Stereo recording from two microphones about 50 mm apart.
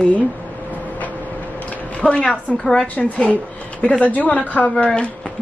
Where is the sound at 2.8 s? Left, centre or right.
Left.